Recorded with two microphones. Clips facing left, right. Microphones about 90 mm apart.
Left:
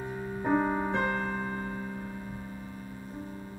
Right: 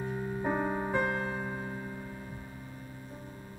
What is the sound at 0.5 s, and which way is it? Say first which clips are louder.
Music: left 5 dB; 40° left (ahead or behind).